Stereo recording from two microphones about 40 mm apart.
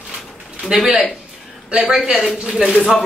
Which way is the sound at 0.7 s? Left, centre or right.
Centre.